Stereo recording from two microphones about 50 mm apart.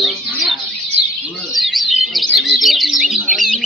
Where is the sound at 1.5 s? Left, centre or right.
Centre.